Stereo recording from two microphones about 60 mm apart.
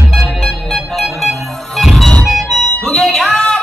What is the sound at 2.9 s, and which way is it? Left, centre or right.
Music, centre.